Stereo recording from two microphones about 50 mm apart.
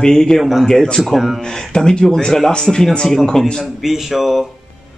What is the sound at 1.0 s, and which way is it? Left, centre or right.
Speech, centre.